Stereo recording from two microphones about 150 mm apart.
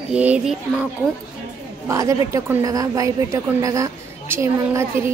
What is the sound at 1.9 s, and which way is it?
A woman's voice, 20° right (ahead or behind).